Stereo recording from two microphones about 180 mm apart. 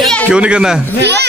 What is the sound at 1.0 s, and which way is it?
Speech, 70° right (ahead or behind).